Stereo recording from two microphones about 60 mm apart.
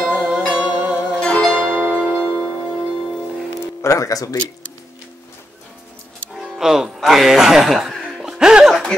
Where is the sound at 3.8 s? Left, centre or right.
Left.